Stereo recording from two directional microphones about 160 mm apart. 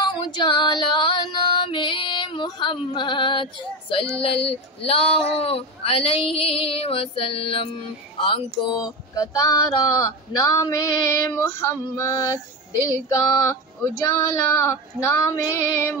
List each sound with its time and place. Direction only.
0.0 s female singing: 30° left (ahead or behind)
4.2 s speech: 35° left (ahead or behind)
9.1 s female singing: 20° left (ahead or behind)